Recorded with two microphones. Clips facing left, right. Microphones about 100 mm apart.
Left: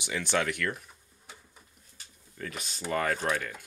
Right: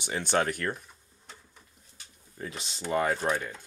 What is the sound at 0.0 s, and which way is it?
Speech, 35° right (ahead or behind).